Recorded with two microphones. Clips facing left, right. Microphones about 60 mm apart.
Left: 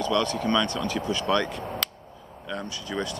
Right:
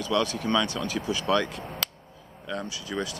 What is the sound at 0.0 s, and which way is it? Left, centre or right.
Speech, centre.